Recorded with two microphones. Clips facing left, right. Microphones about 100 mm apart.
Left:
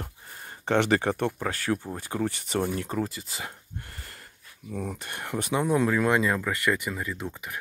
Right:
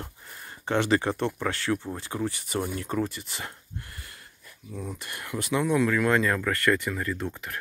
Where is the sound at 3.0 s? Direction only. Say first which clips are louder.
Right 1 dB; 15° left (ahead or behind).